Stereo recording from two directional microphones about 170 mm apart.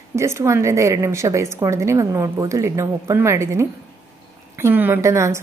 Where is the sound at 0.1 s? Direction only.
15° right (ahead or behind).